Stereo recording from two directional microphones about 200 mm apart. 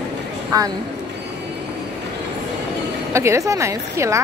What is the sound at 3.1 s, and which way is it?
A woman's voice, 15° right (ahead or behind).